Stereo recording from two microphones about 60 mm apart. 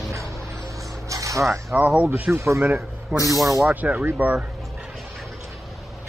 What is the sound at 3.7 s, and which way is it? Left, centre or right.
Speech, right.